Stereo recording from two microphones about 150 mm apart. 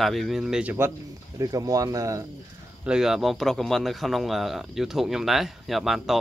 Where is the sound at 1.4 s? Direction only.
25° right (ahead or behind).